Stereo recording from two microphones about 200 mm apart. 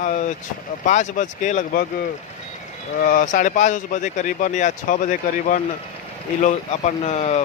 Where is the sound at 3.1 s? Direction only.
40° left (ahead or behind).